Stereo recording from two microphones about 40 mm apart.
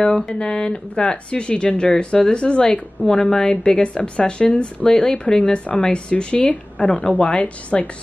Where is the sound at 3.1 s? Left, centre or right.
Centre.